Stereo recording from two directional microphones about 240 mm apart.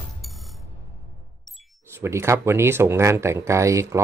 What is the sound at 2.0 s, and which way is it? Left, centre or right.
Speech, centre.